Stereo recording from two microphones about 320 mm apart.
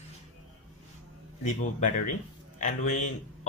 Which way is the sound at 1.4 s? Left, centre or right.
Left.